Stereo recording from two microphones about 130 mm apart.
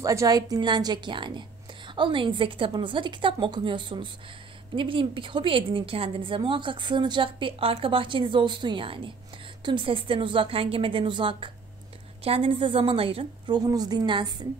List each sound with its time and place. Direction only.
0.0 s a woman's voice: 25° right (ahead or behind); by 13.6 s 45° right (ahead or behind)
13.6 s a woman's voice: 30° right (ahead or behind)